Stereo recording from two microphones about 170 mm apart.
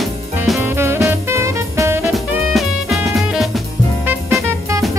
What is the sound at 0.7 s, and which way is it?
Music, 15° right (ahead or behind).